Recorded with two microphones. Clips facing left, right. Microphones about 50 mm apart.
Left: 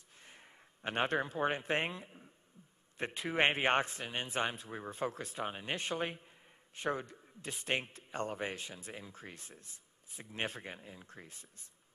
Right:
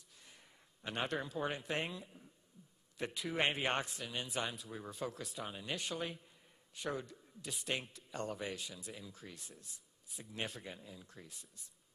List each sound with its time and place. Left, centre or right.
0.2 s a man's voice: left